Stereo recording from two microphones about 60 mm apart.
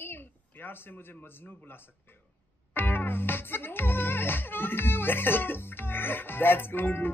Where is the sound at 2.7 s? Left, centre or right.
Left.